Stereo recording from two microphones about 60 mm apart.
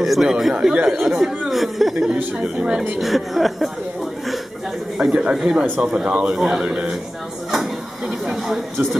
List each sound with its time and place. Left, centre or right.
0.0 s a woman's voice: centre
2.3 s speech: centre
3.0 s a woman's voice: centre
4.9 s a woman's voice: centre
8.3 s a woman's voice: centre